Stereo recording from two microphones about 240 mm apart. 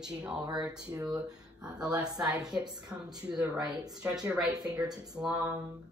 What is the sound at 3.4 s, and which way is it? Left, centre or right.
Speech, centre.